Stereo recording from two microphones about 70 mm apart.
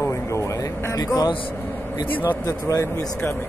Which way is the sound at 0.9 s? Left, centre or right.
Left.